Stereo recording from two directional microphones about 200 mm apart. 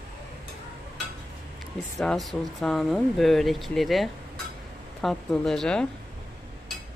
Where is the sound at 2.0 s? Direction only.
Centre (ahead or behind).